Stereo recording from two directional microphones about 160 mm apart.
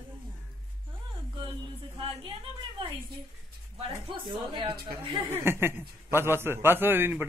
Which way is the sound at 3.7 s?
35° right (ahead or behind).